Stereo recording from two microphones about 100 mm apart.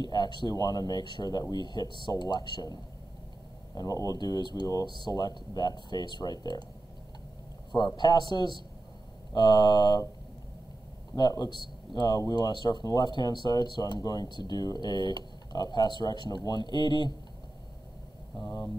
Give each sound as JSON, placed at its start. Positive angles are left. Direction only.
{"t": 0.0, "sound": "speech", "side_deg": 45}
{"t": 7.7, "sound": "speech", "side_deg": 45}
{"t": 11.1, "sound": "speech", "side_deg": 45}
{"t": 18.4, "sound": "speech", "side_deg": 35}